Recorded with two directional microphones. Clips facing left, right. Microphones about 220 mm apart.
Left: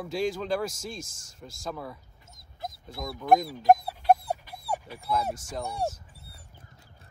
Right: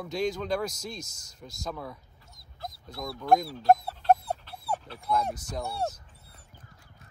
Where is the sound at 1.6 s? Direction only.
5° left (ahead or behind).